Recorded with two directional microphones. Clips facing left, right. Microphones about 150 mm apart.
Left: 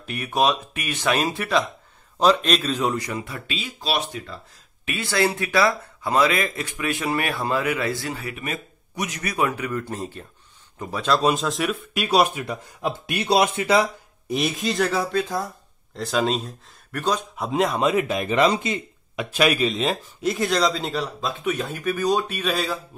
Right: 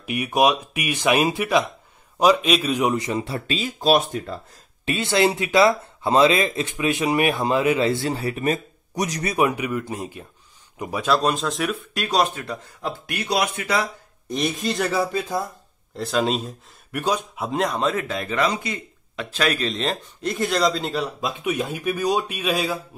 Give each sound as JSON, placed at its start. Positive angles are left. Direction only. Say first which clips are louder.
{"t": 0.0, "sound": "speech", "louder": "right 3 dB", "side_deg": -15}
{"t": 4.8, "sound": "speech", "louder": "right 3 dB", "side_deg": -25}
{"t": 9.3, "sound": "speech", "louder": "right 2 dB", "side_deg": -20}
{"t": 11.1, "sound": "a man's voice", "louder": "left 1 dB", "side_deg": 0}
{"t": 13.0, "sound": "speech", "louder": "left 4 dB", "side_deg": 25}
{"t": 14.2, "sound": "a man's voice", "louder": "even", "side_deg": 5}
{"t": 16.9, "sound": "speech", "louder": "right 1 dB", "side_deg": -10}
{"t": 17.5, "sound": "speech", "louder": "left 2 dB", "side_deg": 0}